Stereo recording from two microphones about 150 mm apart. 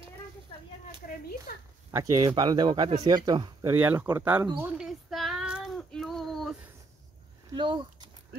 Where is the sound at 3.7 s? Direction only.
15° right (ahead or behind).